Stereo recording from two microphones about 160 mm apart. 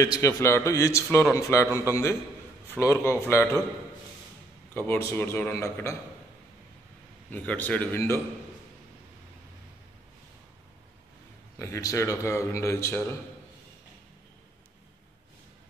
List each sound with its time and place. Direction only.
0.0 s a man's voice: 20° left (ahead or behind)
2.8 s a man's voice: 20° left (ahead or behind)
4.7 s a man's voice: 15° left (ahead or behind)
7.2 s a man's voice: 10° left (ahead or behind)
11.5 s a man's voice: 20° left (ahead or behind)